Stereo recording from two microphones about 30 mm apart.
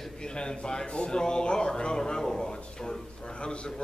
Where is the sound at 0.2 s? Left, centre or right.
Left.